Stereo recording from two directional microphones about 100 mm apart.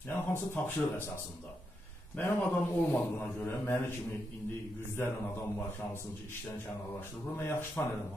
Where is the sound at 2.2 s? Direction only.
20° left (ahead or behind).